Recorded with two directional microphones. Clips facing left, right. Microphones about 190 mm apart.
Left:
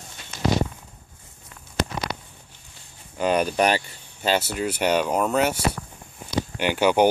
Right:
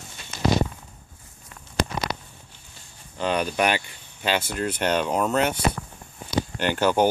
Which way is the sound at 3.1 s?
10° left (ahead or behind).